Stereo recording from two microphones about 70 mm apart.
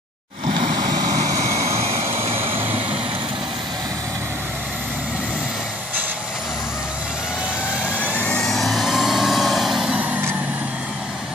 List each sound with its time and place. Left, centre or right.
0.7 s vehicle: right
7.8 s vehicle: left
8.4 s vehicle: centre